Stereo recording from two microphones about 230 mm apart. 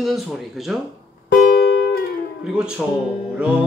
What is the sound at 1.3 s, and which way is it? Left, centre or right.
Music, left.